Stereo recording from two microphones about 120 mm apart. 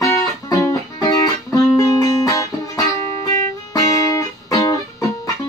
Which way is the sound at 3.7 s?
30° left (ahead or behind).